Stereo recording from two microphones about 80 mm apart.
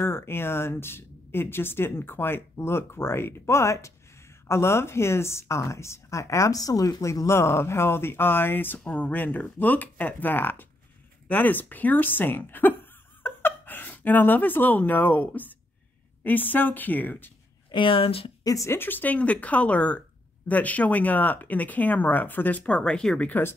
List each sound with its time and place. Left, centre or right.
0.0 s speech: left
17.6 s speech: left
18.4 s speech: left
18.7 s speech: left; by 23.2 s centre
23.2 s speech: left